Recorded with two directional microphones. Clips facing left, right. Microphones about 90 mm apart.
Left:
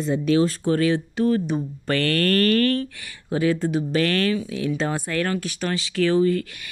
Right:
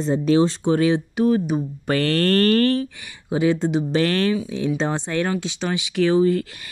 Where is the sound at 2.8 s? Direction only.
15° right (ahead or behind).